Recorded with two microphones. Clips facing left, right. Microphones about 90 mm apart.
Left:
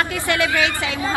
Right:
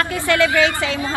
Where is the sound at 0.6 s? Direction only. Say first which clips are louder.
Right 4 dB; 20° left (ahead or behind).